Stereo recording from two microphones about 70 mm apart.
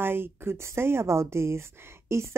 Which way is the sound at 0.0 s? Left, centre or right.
Right.